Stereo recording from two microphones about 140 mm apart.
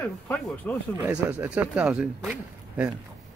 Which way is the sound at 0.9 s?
15° right (ahead or behind).